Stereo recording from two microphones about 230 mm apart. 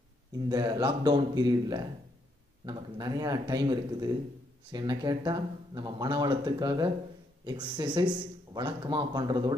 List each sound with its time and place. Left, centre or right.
0.5 s speech: centre